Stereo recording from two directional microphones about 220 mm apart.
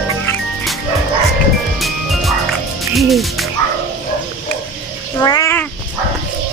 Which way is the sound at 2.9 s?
Centre (ahead or behind).